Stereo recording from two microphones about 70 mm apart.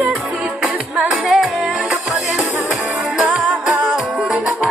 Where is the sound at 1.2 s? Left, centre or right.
Centre.